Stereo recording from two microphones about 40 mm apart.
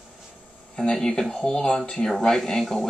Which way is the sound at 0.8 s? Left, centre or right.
Centre.